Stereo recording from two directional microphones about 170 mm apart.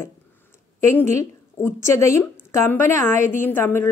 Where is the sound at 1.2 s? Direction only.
15° left (ahead or behind).